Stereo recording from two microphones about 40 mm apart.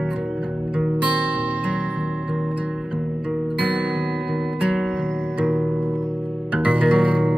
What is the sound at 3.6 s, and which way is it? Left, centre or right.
Music, right.